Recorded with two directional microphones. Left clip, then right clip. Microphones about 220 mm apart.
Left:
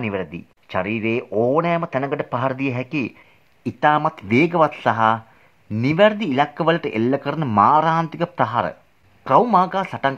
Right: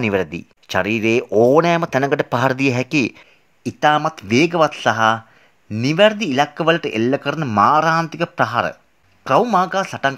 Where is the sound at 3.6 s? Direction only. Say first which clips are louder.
Right 1 dB; 25° right (ahead or behind).